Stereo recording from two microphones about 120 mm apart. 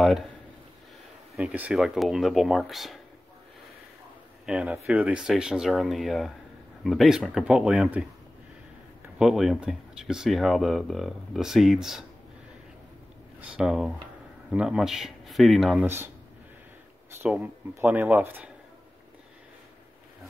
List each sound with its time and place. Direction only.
1.4 s speech: 10° right (ahead or behind)
4.5 s speech: 10° right (ahead or behind)
9.2 s speech: 5° right (ahead or behind)
13.4 s speech: 5° right (ahead or behind)
15.8 s speech: 20° right (ahead or behind)
17.2 s speech: 10° right (ahead or behind)